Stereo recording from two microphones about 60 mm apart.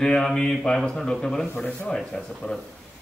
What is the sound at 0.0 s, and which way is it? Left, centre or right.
A man's voice, centre.